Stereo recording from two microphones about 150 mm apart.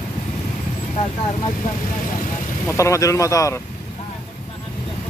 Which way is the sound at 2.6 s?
20° left (ahead or behind).